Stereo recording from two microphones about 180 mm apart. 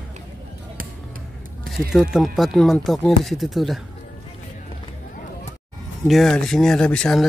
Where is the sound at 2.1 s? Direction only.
Centre (ahead or behind).